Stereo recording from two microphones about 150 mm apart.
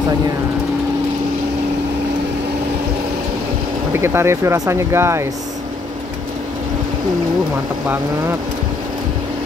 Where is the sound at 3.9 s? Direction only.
15° right (ahead or behind).